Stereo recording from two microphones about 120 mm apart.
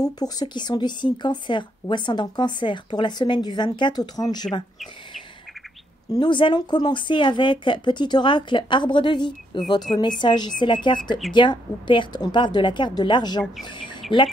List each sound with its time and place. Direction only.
0.0 s speech: 35° left (ahead or behind)
6.1 s speech: 40° left (ahead or behind)